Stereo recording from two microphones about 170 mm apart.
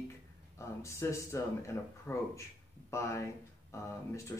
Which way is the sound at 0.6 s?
15° left (ahead or behind).